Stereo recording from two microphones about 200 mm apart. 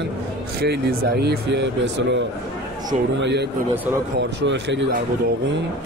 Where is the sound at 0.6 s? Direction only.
50° right (ahead or behind).